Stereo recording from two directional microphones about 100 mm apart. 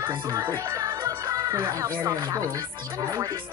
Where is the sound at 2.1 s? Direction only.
30° right (ahead or behind).